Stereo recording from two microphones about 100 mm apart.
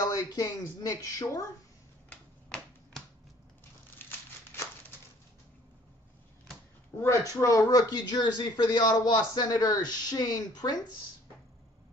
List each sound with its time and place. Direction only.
0.1 s speech: 40° left (ahead or behind)
2.0 s typewriter: 10° left (ahead or behind)
7.0 s speech: 30° left (ahead or behind)